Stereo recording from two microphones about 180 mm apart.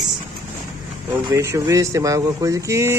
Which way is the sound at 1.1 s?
15° right (ahead or behind).